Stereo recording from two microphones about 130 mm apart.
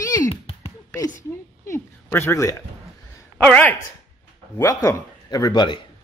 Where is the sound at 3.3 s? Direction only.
10° left (ahead or behind).